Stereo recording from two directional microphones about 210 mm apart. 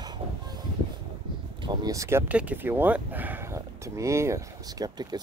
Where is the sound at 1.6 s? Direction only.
20° right (ahead or behind).